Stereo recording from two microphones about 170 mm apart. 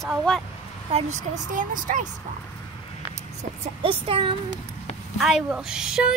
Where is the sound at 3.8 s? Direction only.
30° right (ahead or behind).